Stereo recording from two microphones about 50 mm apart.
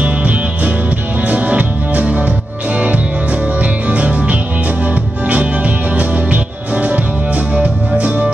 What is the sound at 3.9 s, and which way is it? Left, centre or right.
Music, right.